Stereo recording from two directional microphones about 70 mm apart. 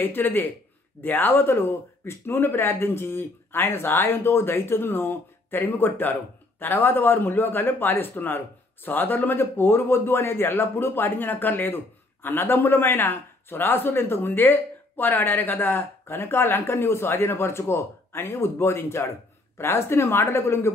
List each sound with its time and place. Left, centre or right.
0.0 s a man's voice: left